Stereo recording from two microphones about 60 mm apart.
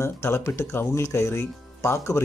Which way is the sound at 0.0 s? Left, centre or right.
Left.